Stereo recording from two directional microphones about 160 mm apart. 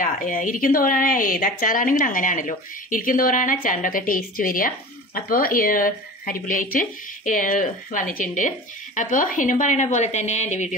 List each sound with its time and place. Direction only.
0.0 s a woman's voice: 55° left (ahead or behind)